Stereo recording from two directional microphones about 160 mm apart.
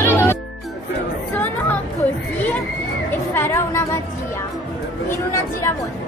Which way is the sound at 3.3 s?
15° left (ahead or behind).